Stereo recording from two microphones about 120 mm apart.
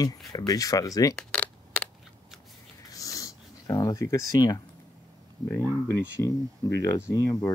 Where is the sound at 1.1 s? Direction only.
10° left (ahead or behind).